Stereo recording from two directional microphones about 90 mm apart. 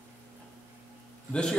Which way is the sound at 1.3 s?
10° left (ahead or behind).